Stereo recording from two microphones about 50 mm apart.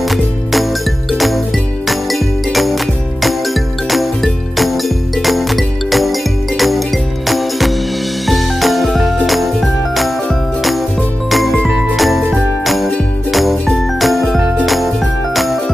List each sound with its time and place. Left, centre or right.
0.1 s music: centre
7.2 s music: centre
11.2 s music: centre
11.6 s jingle bell: centre
12.6 s music: centre